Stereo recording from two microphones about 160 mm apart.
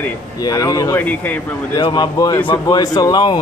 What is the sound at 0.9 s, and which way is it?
Speech, 10° left (ahead or behind).